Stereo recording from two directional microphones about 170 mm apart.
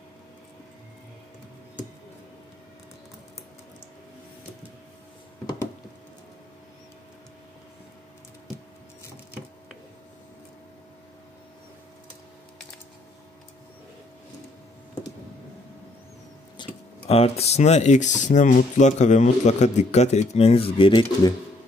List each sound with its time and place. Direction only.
16.6 s tick-tock: 25° left (ahead or behind)
17.1 s speech: 40° left (ahead or behind)